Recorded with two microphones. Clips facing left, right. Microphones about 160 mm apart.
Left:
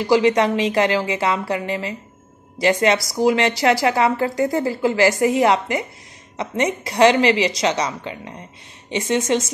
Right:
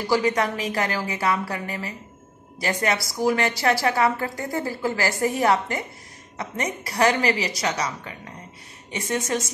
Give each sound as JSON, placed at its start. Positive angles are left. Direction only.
{"t": 0.0, "sound": "a woman's voice", "side_deg": 20}